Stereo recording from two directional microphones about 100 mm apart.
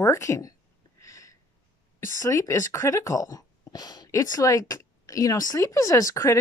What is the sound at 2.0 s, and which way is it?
Speech, 30° left (ahead or behind).